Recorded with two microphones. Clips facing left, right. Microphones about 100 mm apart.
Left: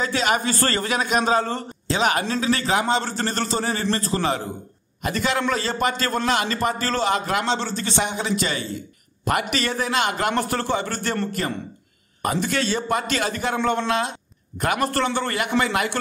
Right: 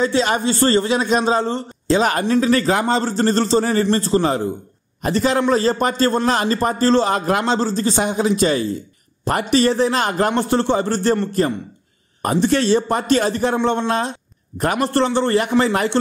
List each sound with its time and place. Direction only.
0.0 s a man's voice: 30° right (ahead or behind)
2.0 s a man's voice: 35° right (ahead or behind)